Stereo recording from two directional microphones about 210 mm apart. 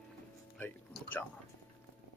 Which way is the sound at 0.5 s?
5° left (ahead or behind).